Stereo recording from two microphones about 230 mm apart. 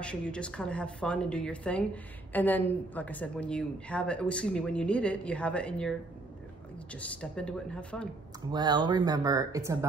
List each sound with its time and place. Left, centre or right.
0.0 s a woman's voice: centre
7.0 s a woman's voice: centre
8.5 s speech: centre